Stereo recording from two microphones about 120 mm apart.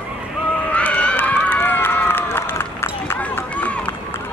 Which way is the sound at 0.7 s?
10° left (ahead or behind).